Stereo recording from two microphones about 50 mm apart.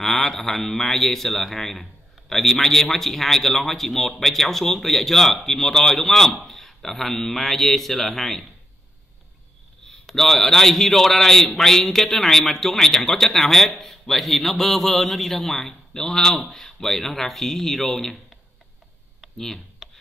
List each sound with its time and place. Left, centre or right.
0.0 s a man's voice: centre
10.0 s a man's voice: centre
19.3 s speech: centre
19.8 s a sound: centre